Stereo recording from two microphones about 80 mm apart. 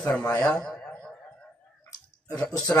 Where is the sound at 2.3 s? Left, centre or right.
Centre.